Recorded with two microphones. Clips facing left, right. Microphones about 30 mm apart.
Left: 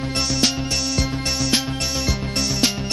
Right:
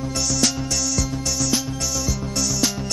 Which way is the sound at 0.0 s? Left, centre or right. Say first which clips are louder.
Left 1 dB; left.